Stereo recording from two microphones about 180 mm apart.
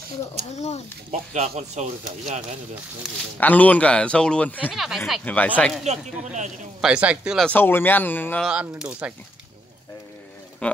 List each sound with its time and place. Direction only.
0.5 s speech: 40° left (ahead or behind)
1.3 s speech: 40° right (ahead or behind)
3.0 s a man's voice: centre (ahead or behind)
3.3 s a man's voice: 10° left (ahead or behind)
5.2 s speech: 10° left (ahead or behind)
5.9 s speech: 40° right (ahead or behind)
6.8 s a man's voice: 5° right (ahead or behind)
7.4 s speech: 10° left (ahead or behind)
8.5 s a man's voice: 5° right (ahead or behind)
10.6 s speech: 5° left (ahead or behind)